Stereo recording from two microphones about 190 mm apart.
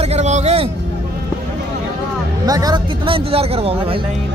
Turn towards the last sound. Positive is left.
turn(degrees=-30)  # may be behind; listen again after turning